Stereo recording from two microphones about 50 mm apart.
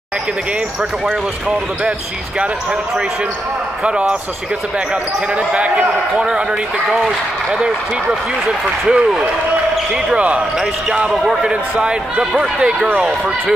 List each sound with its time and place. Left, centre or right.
1.9 s a man's voice: right
3.8 s a man's voice: centre
5.3 s a man's voice: right
6.9 s speech: centre
10.1 s a man's voice: right
11.1 s speech: centre
11.8 s speech: centre